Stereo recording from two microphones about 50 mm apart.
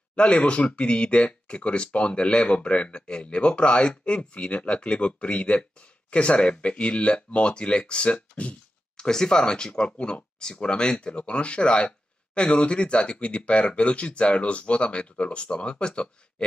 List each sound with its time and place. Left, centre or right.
0.1 s speech: left